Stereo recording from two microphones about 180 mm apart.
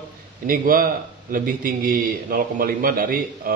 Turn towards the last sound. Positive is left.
turn(degrees=-50)  # may be behind; listen again after turning